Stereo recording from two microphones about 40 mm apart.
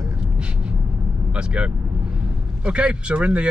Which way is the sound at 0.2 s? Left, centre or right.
Right.